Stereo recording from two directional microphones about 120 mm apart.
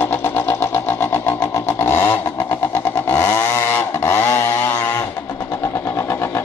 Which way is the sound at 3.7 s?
20° left (ahead or behind).